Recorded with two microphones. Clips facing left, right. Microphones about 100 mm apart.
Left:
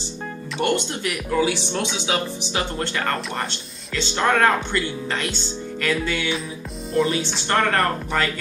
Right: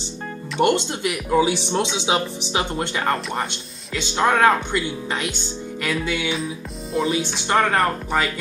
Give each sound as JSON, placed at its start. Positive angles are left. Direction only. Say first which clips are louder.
{"t": 0.6, "sound": "speech", "louder": "right 4 dB", "side_deg": -20}